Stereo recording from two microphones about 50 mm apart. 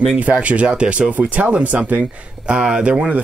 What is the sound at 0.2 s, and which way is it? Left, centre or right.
Speech, right.